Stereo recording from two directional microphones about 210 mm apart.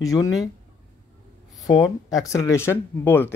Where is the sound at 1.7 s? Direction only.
15° left (ahead or behind).